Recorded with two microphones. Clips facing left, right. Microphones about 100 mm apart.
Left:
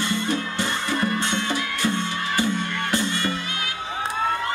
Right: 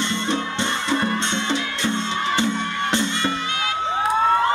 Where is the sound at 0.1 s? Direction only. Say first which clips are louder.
Right 1 dB; 25° right (ahead or behind).